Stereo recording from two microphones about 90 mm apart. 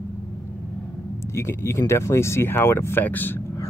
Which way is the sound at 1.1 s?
30° left (ahead or behind).